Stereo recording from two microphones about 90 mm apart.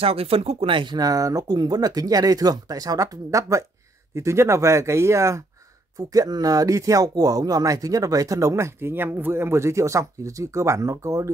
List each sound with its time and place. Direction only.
0.0 s speech: 90° right; by 0.9 s 70° right (ahead or behind)
0.9 s speech: 45° right (ahead or behind)
5.9 s speech: 45° right (ahead or behind)